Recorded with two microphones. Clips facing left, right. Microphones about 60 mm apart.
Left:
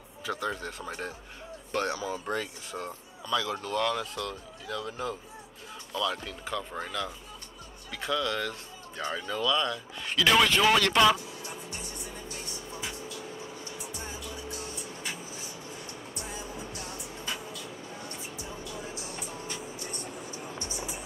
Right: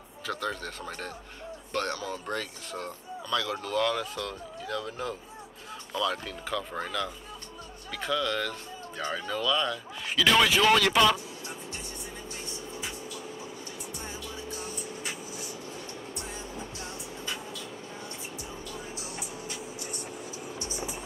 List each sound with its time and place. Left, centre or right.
0.3 s speech: centre
12.3 s music: right
16.2 s music: right
18.9 s music: right
19.3 s music: centre
20.0 s vehicle: centre